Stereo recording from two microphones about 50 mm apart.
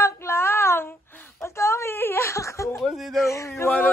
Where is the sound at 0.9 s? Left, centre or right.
Left.